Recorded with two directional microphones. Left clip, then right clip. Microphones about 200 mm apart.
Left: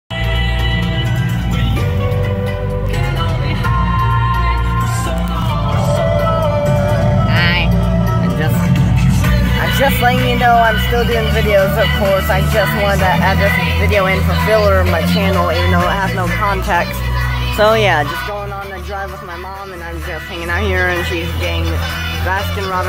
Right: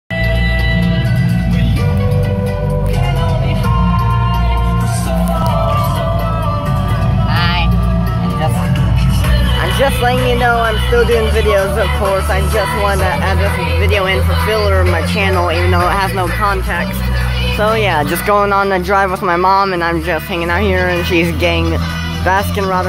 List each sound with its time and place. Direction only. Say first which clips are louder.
9.8 s speech: even; centre (ahead or behind)
17.6 s speech: left 3 dB; 5° left (ahead or behind)
18.3 s speech: right 12 dB; 40° right (ahead or behind)
20.6 s a woman's voice: right 1 dB; 20° right (ahead or behind)